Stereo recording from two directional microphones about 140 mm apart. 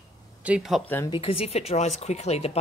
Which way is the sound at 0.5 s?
Centre (ahead or behind).